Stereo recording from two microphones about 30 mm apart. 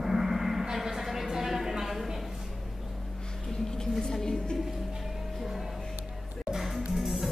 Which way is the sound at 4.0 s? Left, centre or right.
Centre.